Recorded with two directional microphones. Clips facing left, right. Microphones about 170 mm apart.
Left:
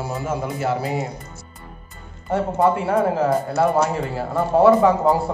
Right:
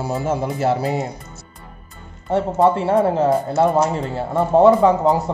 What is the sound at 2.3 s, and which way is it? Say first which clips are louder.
Speech: right 2 dB; 20° right (ahead or behind).